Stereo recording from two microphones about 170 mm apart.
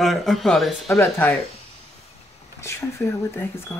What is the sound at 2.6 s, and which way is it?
Speech, 15° left (ahead or behind).